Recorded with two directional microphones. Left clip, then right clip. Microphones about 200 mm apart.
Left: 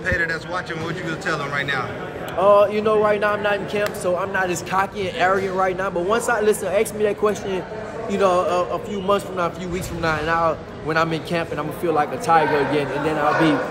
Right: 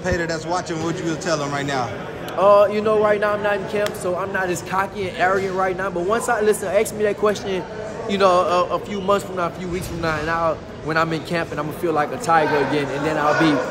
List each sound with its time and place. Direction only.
0.0 s a man's voice: 25° right (ahead or behind)
2.3 s a man's voice: 5° right (ahead or behind)